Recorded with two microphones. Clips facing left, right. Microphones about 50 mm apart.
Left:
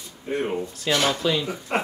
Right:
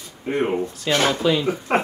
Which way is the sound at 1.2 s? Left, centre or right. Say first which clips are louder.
Right 4 dB; centre.